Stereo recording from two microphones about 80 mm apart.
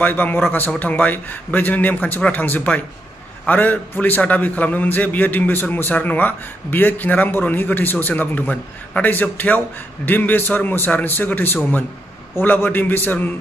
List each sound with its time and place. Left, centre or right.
0.0 s a man's voice: left